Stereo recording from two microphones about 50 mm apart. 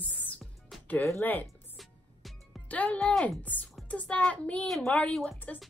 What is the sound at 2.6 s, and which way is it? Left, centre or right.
Speech, left.